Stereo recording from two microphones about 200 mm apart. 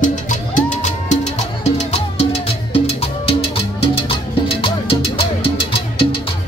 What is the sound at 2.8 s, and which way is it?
Salsa music, 30° left (ahead or behind).